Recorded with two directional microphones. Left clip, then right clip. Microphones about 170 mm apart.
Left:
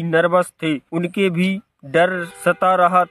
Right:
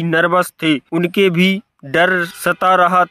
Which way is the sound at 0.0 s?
25° right (ahead or behind).